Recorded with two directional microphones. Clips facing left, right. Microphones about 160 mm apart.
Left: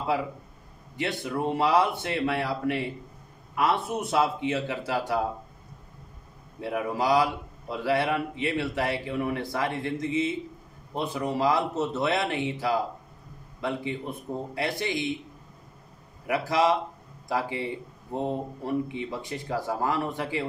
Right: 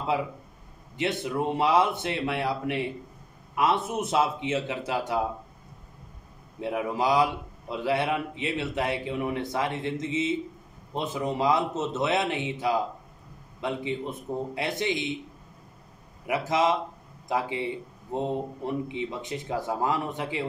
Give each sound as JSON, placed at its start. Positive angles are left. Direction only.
{"t": 0.9, "sound": "a man's voice", "side_deg": -20}
{"t": 6.6, "sound": "a man's voice", "side_deg": -20}
{"t": 16.3, "sound": "a man's voice", "side_deg": -20}